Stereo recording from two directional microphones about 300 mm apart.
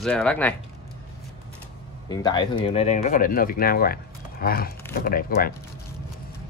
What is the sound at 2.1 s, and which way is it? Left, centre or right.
Speech, centre.